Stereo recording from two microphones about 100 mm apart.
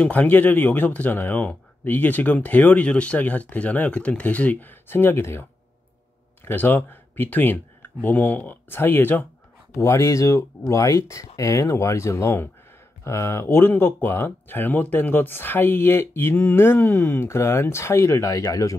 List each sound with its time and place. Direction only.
0.0 s speech: 15° left (ahead or behind); by 18.8 s 35° left (ahead or behind)